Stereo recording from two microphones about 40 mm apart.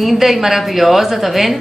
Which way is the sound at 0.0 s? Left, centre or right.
Centre.